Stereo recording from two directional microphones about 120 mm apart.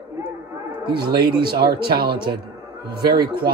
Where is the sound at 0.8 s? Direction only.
40° right (ahead or behind).